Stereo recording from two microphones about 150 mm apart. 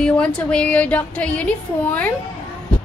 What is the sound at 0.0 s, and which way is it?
A woman's voice, 5° left (ahead or behind).